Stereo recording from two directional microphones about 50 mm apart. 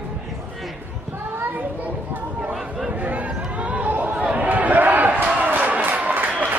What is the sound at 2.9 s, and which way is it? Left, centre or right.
Chatter, right.